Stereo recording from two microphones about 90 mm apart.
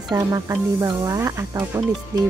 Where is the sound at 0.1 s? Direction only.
40° right (ahead or behind).